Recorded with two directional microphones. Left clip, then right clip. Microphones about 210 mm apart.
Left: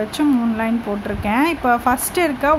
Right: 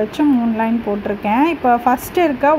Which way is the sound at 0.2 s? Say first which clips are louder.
Right 2 dB; centre (ahead or behind).